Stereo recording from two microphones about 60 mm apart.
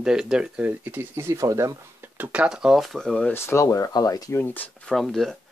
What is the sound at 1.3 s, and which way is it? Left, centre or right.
Speech, right.